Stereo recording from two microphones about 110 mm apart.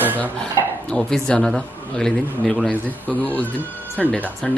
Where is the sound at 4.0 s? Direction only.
5° left (ahead or behind).